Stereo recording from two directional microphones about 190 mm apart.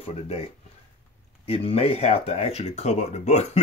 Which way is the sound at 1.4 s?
30° left (ahead or behind).